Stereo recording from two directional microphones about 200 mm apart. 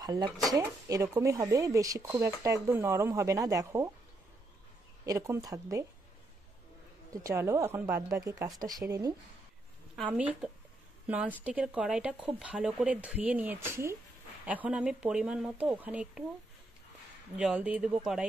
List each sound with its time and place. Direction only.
0.0 s speech: 20° right (ahead or behind)
5.0 s speech: 15° right (ahead or behind)
7.2 s speech: 15° right (ahead or behind)
9.9 s speech: 5° right (ahead or behind)
17.4 s speech: 5° right (ahead or behind)